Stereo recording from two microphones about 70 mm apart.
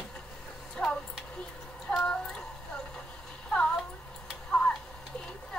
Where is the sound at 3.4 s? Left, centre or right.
Centre.